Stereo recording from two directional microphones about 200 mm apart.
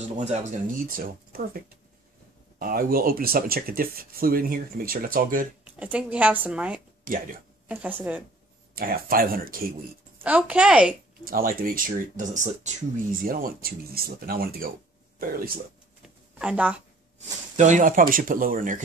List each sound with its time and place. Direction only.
0.2 s speech: 35° right (ahead or behind)
2.6 s speech: 45° right (ahead or behind)
5.8 s a woman's voice: 5° right (ahead or behind)
7.1 s speech: 45° right (ahead or behind)
7.6 s a woman's voice: 10° right (ahead or behind)
8.7 s speech: 45° right (ahead or behind)
10.2 s a woman's voice: 5° right (ahead or behind)
11.2 s speech: 45° right (ahead or behind)
16.3 s a woman's voice: 5° right (ahead or behind)
17.6 s speech: 40° right (ahead or behind)